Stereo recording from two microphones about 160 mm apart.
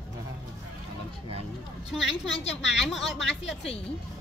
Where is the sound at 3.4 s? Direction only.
40° left (ahead or behind).